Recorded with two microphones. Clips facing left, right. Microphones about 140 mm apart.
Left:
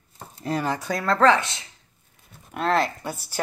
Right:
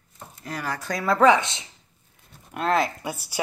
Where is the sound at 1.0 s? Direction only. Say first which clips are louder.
Right 1 dB; 10° right (ahead or behind).